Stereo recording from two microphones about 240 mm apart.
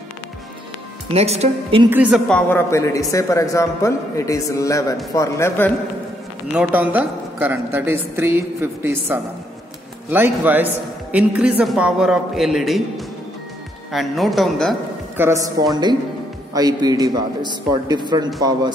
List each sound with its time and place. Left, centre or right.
1.1 s a woman's voice: right
1.9 s a man's voice: centre
6.5 s a woman's voice: centre
15.2 s a woman's voice: centre